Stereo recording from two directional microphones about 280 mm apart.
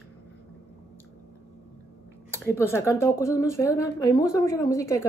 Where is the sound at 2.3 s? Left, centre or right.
Centre.